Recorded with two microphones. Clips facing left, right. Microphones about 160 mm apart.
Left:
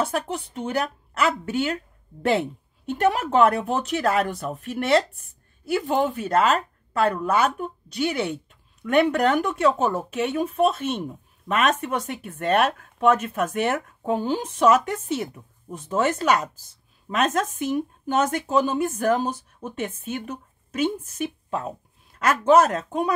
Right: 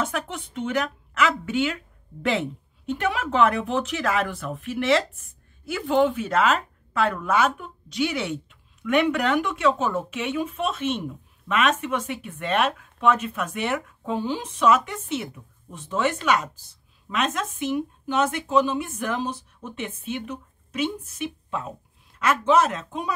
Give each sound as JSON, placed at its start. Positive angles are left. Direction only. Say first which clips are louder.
{"t": 0.0, "sound": "speech", "louder": "left 3 dB", "side_deg": 35}
{"t": 2.9, "sound": "speech", "louder": "left 4 dB", "side_deg": 40}